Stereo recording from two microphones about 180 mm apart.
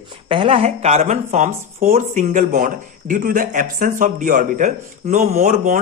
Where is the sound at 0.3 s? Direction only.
30° right (ahead or behind).